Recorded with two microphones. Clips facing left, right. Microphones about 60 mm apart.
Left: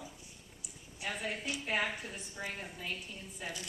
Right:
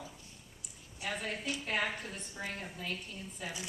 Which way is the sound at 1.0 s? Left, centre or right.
Centre.